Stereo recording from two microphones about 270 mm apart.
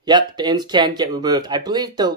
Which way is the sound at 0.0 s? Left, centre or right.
Centre.